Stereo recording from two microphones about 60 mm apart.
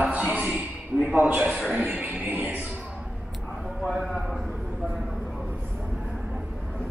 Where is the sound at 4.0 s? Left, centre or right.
Centre.